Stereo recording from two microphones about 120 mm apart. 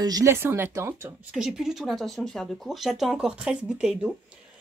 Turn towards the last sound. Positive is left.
turn(degrees=-5)  # may be behind; listen again after turning